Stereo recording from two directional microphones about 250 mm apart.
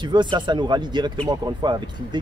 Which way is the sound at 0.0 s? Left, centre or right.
Centre.